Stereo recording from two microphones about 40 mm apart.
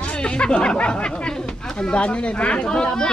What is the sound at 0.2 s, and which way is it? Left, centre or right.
Speech, left.